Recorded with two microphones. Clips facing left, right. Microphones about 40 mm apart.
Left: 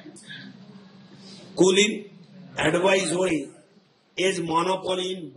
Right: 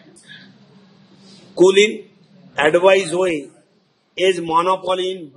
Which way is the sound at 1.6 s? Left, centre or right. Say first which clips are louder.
Right 7 dB; right.